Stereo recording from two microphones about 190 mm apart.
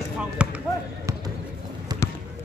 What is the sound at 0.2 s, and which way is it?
Speech, 5° right (ahead or behind).